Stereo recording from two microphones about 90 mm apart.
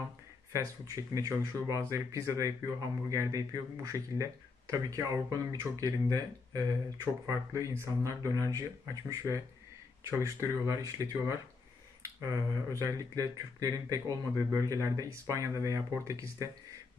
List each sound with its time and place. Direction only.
0.5 s speech: 35° right (ahead or behind)